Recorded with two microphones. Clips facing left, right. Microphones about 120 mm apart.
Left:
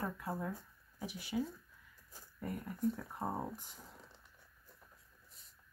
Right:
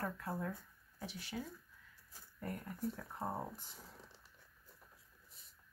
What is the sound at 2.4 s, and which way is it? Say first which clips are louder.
Speech: left 5 dB; 5° left (ahead or behind).